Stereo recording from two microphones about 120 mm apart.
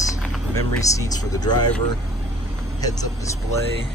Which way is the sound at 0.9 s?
30° left (ahead or behind).